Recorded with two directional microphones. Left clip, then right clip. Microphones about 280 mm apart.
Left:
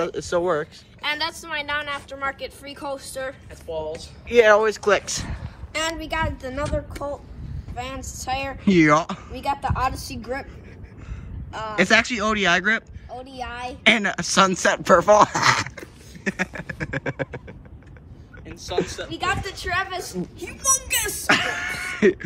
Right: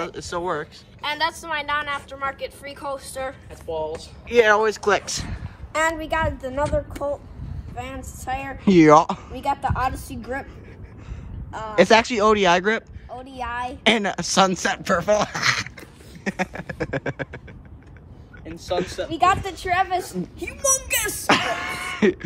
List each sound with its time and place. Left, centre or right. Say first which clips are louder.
0.0 s a woman's voice: left 4 dB; centre
5.8 s a woman's voice: right 3 dB; centre
11.5 s a woman's voice: right 3 dB; centre
14.8 s speech: left 7 dB; centre
18.8 s speech: left 5 dB; centre
19.4 s a woman's voice: right 3 dB; right
20.6 s speech: right 1 dB; right
21.3 s throat clearing: even; centre